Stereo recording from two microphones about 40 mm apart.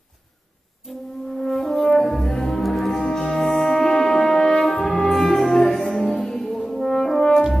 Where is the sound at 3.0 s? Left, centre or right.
Centre.